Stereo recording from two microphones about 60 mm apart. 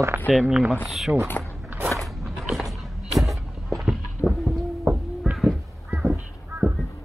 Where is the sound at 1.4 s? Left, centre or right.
Left.